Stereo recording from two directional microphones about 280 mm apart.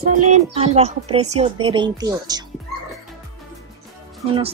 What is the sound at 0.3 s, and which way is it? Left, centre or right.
Speech, right.